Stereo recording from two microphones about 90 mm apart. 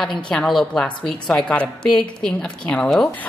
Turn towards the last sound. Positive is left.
turn(degrees=10)  # may be behind; listen again after turning